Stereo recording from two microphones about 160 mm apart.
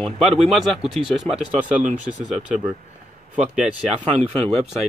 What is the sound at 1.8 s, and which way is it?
Speech, 45° right (ahead or behind).